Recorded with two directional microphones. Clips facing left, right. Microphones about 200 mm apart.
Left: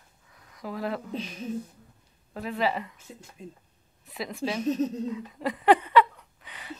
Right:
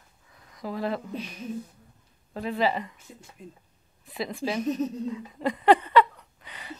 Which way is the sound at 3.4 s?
25° left (ahead or behind).